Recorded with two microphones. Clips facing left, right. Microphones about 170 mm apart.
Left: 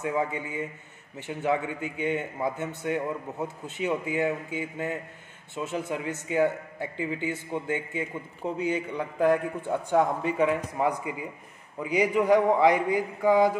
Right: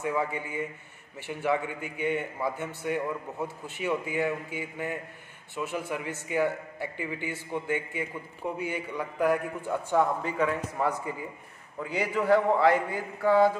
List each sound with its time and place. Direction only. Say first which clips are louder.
0.0 s a man's voice: left 1 dB; 20° left (ahead or behind)